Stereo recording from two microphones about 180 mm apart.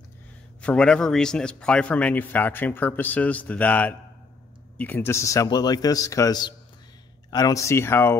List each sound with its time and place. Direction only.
0.6 s a man's voice: 5° left (ahead or behind)